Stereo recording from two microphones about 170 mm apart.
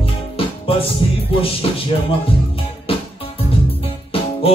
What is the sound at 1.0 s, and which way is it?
Music, 30° left (ahead or behind).